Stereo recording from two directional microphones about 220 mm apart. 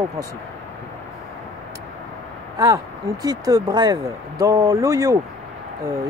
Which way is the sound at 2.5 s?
15° right (ahead or behind).